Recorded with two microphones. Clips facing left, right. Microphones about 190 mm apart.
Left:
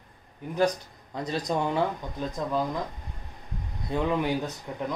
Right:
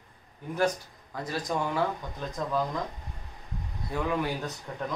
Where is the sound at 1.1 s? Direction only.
20° left (ahead or behind).